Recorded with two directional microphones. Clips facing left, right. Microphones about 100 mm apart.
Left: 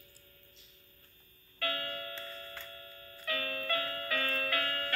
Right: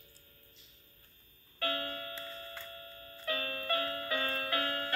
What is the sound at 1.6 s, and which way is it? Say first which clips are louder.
Clock: right 1 dB; 25° right (ahead or behind).